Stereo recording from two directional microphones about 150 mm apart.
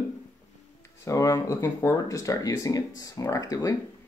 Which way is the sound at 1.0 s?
20° left (ahead or behind).